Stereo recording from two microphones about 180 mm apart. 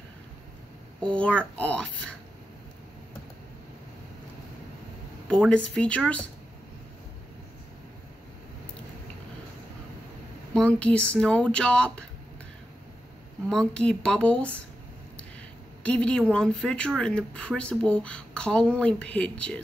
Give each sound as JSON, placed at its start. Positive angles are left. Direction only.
{"t": 1.0, "sound": "a woman's voice", "side_deg": 5}
{"t": 5.5, "sound": "speech", "side_deg": 5}
{"t": 10.5, "sound": "a woman's voice", "side_deg": 5}
{"t": 13.5, "sound": "a woman's voice", "side_deg": 5}
{"t": 15.8, "sound": "a woman's voice", "side_deg": 5}